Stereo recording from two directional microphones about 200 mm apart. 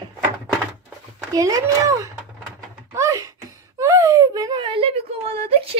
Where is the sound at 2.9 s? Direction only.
15° right (ahead or behind).